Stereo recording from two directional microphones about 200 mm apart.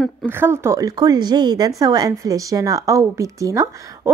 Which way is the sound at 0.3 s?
10° right (ahead or behind).